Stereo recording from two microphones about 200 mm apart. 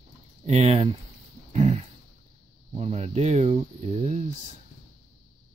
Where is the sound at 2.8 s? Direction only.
35° right (ahead or behind).